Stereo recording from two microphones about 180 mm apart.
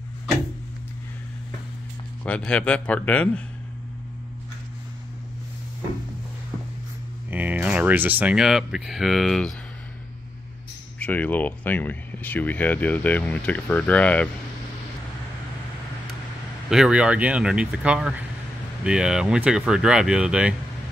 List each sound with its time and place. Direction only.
2.2 s speech: 5° left (ahead or behind)
7.2 s speech: 10° right (ahead or behind)
11.0 s speech: 10° left (ahead or behind)
16.7 s speech: 5° right (ahead or behind)